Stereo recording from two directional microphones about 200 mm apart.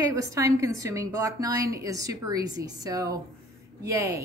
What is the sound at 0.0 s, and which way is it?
A woman's voice, 15° right (ahead or behind).